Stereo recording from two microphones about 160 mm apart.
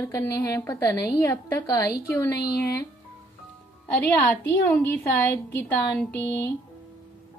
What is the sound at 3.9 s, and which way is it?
A woman's voice, 10° left (ahead or behind).